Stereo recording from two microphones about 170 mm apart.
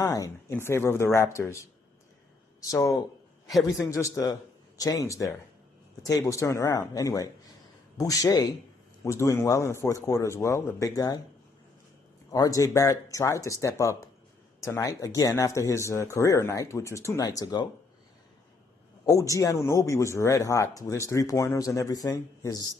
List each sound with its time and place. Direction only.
0.0 s speech: 20° left (ahead or behind)
2.7 s speech: 20° left (ahead or behind)
3.5 s a man's voice: centre (ahead or behind)
3.9 s speech: 20° left (ahead or behind)
12.3 s speech: 20° left (ahead or behind)
19.0 s speech: 20° left (ahead or behind)